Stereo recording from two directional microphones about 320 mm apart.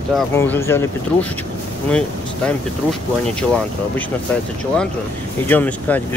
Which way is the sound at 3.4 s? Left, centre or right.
Centre.